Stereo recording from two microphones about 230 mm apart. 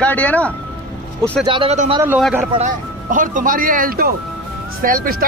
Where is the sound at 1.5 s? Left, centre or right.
Right.